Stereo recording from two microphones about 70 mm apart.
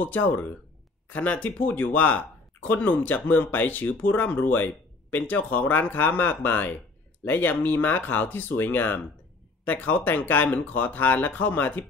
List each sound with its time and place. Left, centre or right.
0.0 s speech: left